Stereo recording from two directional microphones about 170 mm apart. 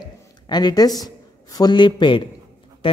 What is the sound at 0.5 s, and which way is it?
Speech, 25° left (ahead or behind).